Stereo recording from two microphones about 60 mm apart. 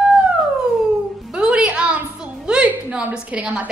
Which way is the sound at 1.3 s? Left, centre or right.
Centre.